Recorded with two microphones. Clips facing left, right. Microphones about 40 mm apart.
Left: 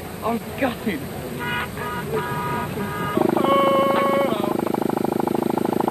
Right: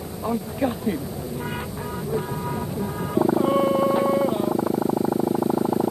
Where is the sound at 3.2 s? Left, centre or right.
Left.